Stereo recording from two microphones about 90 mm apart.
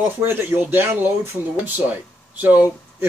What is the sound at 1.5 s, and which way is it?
Speech, 15° right (ahead or behind).